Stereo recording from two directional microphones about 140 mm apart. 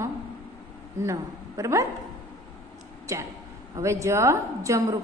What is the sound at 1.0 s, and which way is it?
Speech, 20° right (ahead or behind).